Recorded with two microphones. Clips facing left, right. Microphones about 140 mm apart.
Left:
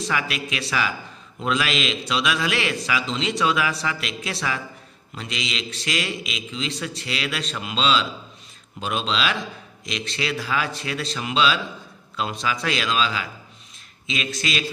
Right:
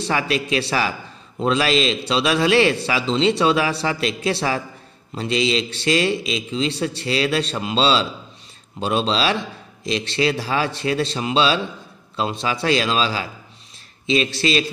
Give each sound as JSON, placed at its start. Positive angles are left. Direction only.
{"t": 0.0, "sound": "a man's voice", "side_deg": -35}